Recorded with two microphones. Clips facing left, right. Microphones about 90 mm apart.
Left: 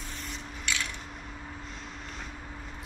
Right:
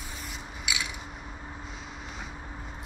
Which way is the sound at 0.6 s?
10° right (ahead or behind).